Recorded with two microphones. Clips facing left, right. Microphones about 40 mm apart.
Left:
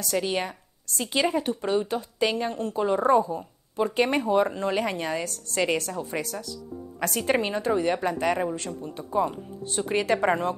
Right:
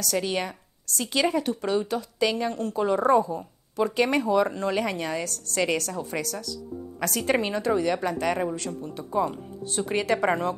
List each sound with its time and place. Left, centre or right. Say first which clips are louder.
0.0 s a woman's voice: even; left